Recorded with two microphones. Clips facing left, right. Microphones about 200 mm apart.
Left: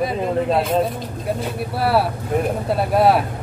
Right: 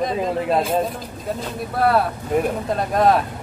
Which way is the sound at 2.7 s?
5° left (ahead or behind).